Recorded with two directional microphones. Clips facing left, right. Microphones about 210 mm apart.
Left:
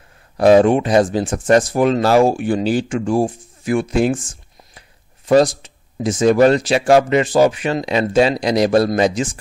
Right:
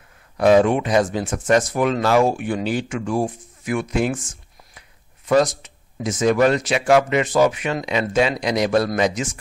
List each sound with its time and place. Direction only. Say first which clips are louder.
0.4 s speech: left 4 dB; 35° left (ahead or behind)